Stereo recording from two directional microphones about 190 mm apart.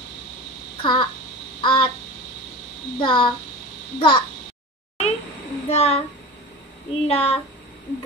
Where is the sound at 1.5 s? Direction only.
25° left (ahead or behind).